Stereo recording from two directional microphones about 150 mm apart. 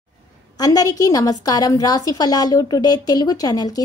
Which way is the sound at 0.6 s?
25° left (ahead or behind).